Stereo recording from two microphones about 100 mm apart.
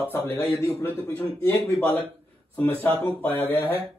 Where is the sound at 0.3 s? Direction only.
30° left (ahead or behind).